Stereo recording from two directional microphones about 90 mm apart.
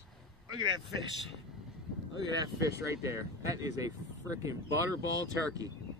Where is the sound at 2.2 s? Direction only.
45° right (ahead or behind).